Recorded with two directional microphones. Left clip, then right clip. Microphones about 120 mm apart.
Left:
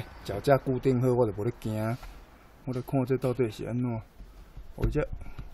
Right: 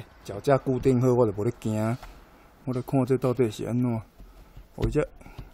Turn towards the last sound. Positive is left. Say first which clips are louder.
# right 4 dB
turn(degrees=-30)  # may be behind; listen again after turning